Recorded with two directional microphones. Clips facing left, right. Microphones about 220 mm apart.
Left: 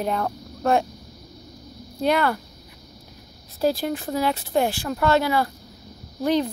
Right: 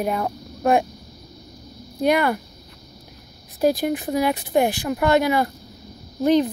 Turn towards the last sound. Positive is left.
turn(degrees=-20)  # may be behind; listen again after turning